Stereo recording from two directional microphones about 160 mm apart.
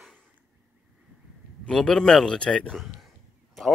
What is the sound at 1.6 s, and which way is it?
A man's voice, 5° left (ahead or behind).